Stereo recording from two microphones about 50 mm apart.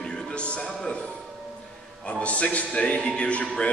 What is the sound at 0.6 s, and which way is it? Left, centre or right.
Music, centre.